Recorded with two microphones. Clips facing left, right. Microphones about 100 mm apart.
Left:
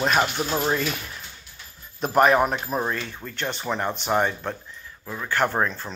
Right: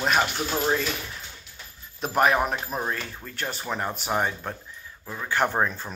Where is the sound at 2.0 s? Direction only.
Centre (ahead or behind).